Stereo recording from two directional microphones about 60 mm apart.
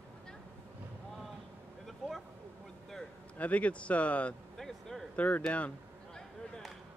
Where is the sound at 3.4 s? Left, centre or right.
Left.